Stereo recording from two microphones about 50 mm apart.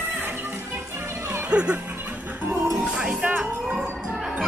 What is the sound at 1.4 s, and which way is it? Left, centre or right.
Music, right.